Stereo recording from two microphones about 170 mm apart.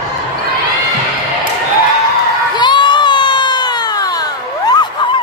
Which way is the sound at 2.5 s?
25° left (ahead or behind).